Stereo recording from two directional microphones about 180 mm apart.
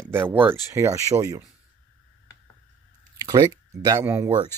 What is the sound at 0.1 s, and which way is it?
Speech, 10° right (ahead or behind).